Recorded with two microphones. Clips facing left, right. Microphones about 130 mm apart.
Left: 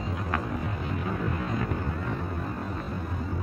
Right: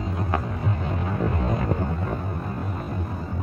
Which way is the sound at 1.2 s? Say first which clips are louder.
Right 5 dB; 35° right (ahead or behind).